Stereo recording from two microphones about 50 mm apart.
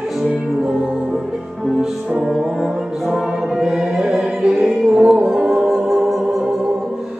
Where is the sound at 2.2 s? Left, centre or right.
Centre.